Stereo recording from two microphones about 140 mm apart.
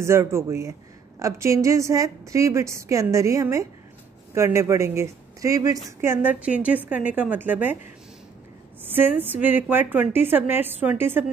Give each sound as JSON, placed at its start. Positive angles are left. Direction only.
{"t": 0.0, "sound": "a woman's voice", "side_deg": -20}
{"t": 8.8, "sound": "a woman's voice", "side_deg": -15}